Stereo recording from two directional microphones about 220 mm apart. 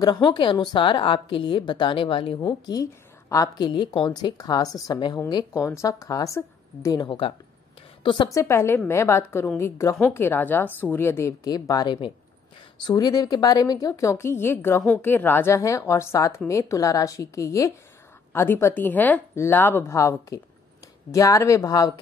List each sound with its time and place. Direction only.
0.0 s a woman's voice: 20° left (ahead or behind)
8.4 s a woman's voice: 10° left (ahead or behind)